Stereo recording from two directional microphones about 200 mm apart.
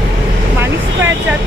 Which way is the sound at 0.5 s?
10° right (ahead or behind).